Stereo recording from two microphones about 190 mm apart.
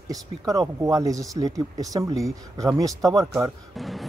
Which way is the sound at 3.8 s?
Centre (ahead or behind).